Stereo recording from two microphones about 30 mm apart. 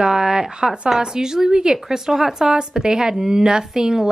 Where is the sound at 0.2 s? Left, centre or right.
Right.